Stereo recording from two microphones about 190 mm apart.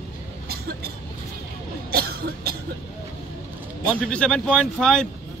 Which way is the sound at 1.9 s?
55° right (ahead or behind).